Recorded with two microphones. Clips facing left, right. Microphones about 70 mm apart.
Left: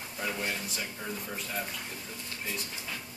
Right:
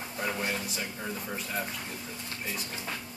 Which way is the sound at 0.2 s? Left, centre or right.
Centre.